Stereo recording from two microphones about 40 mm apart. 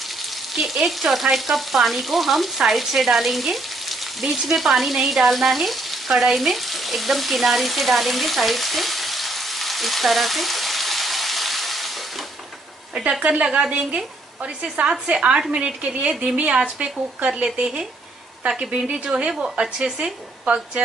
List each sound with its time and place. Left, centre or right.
0.5 s frying: centre
13.2 s a woman's voice: right
18.7 s a woman's voice: right
20.4 s speech: right